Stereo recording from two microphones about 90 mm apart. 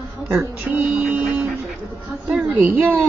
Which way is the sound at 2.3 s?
15° right (ahead or behind).